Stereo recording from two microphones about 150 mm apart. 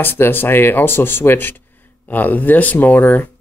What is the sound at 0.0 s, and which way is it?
Speech, 15° left (ahead or behind).